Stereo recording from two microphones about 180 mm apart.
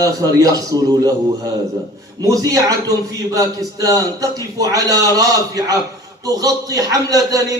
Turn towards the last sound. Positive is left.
turn(degrees=-20)  # may be behind; listen again after turning